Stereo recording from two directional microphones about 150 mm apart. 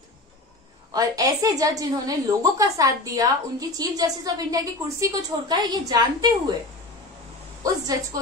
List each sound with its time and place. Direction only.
0.9 s a woman's voice: 25° right (ahead or behind)
7.6 s a woman's voice: 20° right (ahead or behind)